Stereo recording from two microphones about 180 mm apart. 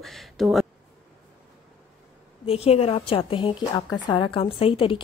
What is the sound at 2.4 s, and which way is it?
A woman's voice, 35° left (ahead or behind).